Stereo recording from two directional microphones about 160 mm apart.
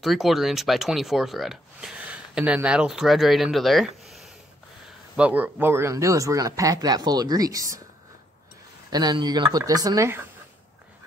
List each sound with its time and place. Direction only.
0.0 s speech: centre (ahead or behind); by 7.8 s 20° right (ahead or behind)
8.9 s speech: 25° right (ahead or behind)